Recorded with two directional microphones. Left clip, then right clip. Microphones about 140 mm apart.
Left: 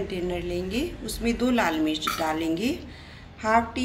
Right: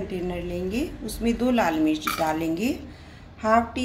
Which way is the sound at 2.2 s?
75° right (ahead or behind).